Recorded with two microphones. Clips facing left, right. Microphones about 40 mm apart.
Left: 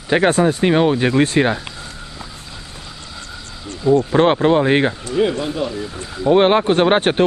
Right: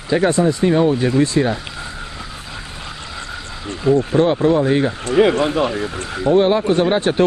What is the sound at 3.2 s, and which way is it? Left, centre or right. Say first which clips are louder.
Neigh: right 4 dB; right.